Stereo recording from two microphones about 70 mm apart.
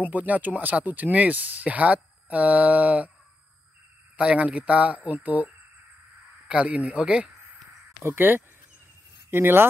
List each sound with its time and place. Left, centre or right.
0.0 s speech: right
4.2 s speech: centre
8.0 s speech: right